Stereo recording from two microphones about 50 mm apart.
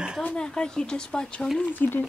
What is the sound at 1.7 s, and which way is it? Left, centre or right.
Speech, left.